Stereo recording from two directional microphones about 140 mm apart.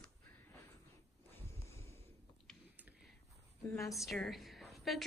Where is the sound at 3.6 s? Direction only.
20° left (ahead or behind).